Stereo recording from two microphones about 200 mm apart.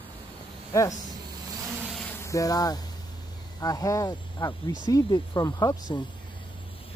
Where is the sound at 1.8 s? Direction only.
Centre (ahead or behind).